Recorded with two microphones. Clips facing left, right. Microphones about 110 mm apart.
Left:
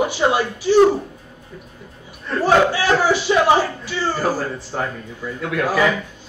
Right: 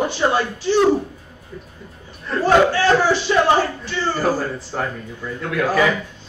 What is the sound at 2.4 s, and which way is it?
A man's voice, 10° left (ahead or behind).